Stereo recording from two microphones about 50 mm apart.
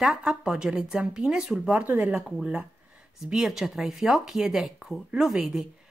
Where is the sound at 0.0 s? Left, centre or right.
Centre.